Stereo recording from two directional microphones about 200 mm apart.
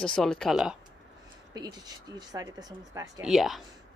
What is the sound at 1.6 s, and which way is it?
Speech, 20° right (ahead or behind).